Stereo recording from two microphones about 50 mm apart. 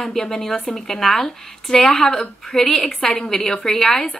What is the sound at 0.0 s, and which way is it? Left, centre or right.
A woman's voice, centre.